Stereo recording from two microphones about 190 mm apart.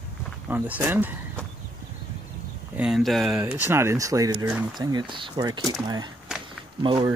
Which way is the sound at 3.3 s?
10° right (ahead or behind).